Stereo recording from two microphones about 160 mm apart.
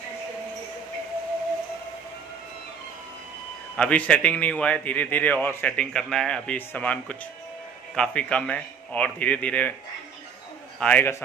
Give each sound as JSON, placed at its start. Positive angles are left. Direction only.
{"t": 3.7, "sound": "a man's voice", "side_deg": 5}
{"t": 10.8, "sound": "a man's voice", "side_deg": 10}